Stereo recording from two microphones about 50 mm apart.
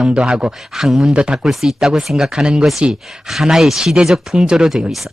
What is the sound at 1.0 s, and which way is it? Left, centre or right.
Speech, centre.